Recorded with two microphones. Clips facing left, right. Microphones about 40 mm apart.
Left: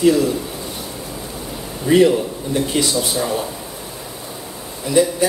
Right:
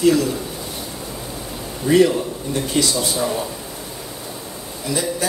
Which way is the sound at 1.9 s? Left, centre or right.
Left.